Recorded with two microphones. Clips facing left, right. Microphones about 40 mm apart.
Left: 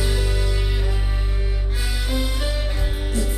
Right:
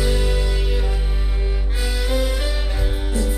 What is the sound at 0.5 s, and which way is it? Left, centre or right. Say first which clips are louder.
Music: right 2 dB; centre.